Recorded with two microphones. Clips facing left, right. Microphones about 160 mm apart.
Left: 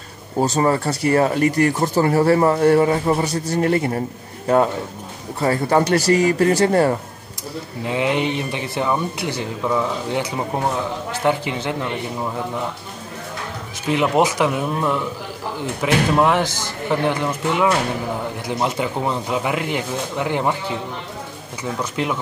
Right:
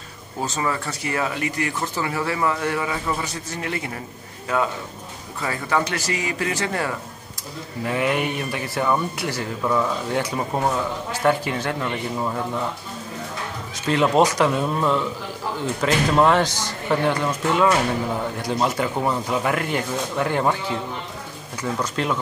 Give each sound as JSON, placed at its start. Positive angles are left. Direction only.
{"t": 0.4, "sound": "speech", "side_deg": 35}
{"t": 5.4, "sound": "speech", "side_deg": 35}
{"t": 7.8, "sound": "speech", "side_deg": 20}
{"t": 13.8, "sound": "speech", "side_deg": 15}
{"t": 16.4, "sound": "a man's voice", "side_deg": -15}
{"t": 16.9, "sound": "speech", "side_deg": 15}
{"t": 21.7, "sound": "speech", "side_deg": 15}